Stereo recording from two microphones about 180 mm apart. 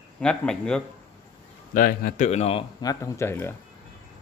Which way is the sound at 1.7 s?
50° left (ahead or behind).